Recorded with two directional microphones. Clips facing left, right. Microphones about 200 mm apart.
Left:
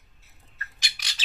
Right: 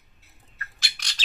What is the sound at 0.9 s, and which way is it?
Squawk, 5° left (ahead or behind).